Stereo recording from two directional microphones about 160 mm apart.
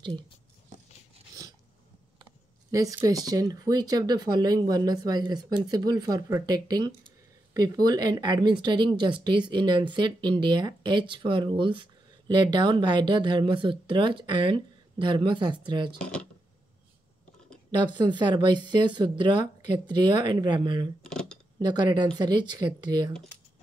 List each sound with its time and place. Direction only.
2.7 s speech: 20° right (ahead or behind)
16.0 s speech: 5° left (ahead or behind)
17.6 s speech: 30° right (ahead or behind)
21.0 s a sound: 5° left (ahead or behind)
21.5 s speech: 25° right (ahead or behind)